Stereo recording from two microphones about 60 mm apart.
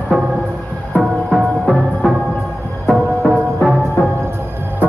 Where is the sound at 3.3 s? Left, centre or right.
Centre.